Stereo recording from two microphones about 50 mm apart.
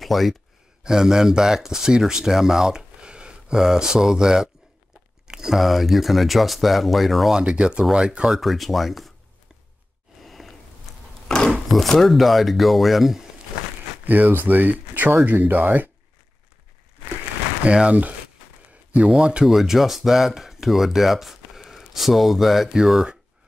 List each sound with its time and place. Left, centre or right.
0.0 s speech: centre
0.8 s speech: centre
7.3 s speech: centre
8.3 s speech: centre
10.2 s a sound: centre
11.2 s a sound: centre
11.7 s speech: centre
14.0 s speech: right
17.6 s speech: right
18.7 s a sound: right
19.0 s speech: centre
19.5 s speech: centre